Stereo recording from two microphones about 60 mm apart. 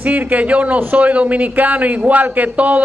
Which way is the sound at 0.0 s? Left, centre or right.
Right.